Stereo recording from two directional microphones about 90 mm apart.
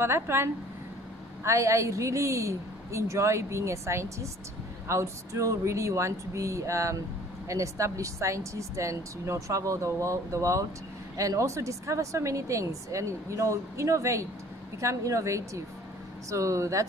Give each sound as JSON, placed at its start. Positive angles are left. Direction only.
{"t": 0.0, "sound": "speech", "side_deg": -30}